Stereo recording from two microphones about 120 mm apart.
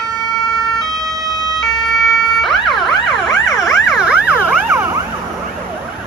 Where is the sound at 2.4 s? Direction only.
Centre (ahead or behind).